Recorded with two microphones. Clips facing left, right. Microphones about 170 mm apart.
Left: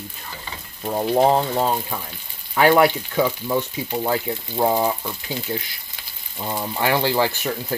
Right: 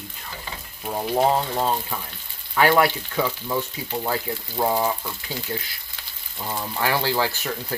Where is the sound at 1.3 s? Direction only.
15° left (ahead or behind).